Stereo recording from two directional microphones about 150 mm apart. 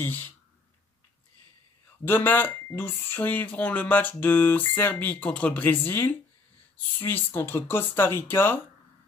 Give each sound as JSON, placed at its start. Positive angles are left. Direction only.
{"t": 0.0, "sound": "speech", "side_deg": 15}
{"t": 2.0, "sound": "speech", "side_deg": 15}